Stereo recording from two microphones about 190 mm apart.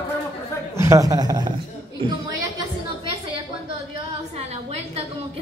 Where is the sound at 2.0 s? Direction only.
20° right (ahead or behind).